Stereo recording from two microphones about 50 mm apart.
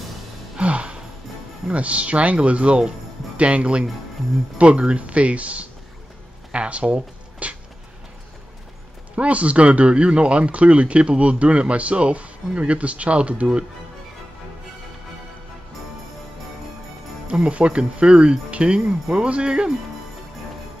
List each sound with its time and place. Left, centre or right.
0.6 s music: right
1.7 s speech: right
6.5 s a sound: right
9.1 s speech: right
17.3 s speech: right